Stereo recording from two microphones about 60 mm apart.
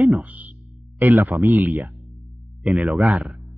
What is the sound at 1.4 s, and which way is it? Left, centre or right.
Speech, right.